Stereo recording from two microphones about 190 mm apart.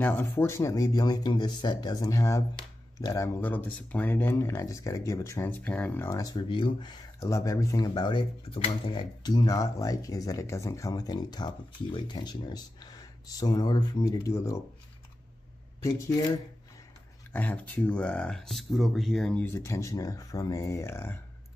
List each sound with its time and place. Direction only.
0.0 s speech: 10° left (ahead or behind)
15.8 s speech: 20° left (ahead or behind)
17.3 s speech: 10° left (ahead or behind)